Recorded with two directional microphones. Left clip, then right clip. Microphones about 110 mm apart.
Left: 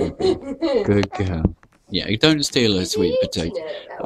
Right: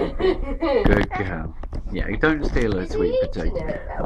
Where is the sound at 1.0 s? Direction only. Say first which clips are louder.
Left 2 dB; 30° left (ahead or behind).